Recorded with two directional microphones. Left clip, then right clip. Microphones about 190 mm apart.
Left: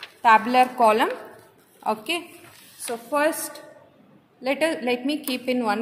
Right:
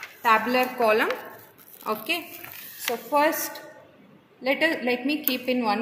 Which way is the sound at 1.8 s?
50° left (ahead or behind).